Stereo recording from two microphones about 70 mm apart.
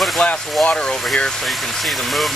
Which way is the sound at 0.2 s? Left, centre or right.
Centre.